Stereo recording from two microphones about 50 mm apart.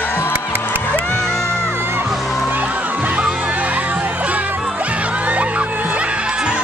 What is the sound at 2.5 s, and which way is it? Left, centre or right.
Music, right.